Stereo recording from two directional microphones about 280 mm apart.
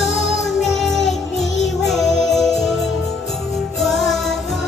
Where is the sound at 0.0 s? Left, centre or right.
Left.